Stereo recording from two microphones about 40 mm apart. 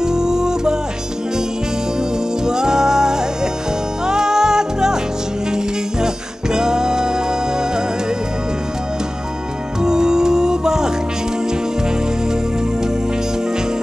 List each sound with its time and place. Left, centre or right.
0.0 s music: centre
2.4 s music: centre
9.8 s music: centre